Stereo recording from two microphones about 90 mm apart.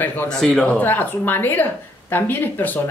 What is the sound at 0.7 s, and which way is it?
Speech, 20° left (ahead or behind).